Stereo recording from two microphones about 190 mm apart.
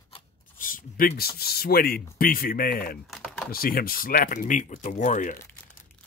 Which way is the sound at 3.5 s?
50° left (ahead or behind).